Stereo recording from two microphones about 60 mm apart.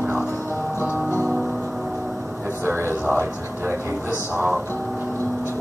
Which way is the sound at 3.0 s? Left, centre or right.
Right.